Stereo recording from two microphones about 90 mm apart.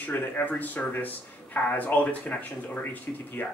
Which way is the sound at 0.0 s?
20° left (ahead or behind).